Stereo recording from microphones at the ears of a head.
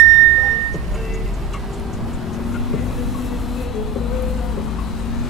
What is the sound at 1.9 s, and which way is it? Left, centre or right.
Vehicle, left.